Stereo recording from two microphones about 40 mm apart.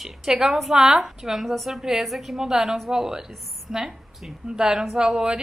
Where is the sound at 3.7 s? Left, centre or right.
Centre.